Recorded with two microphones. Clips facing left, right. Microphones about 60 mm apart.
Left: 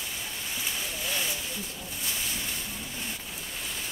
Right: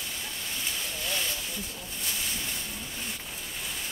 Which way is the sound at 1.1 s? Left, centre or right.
Centre.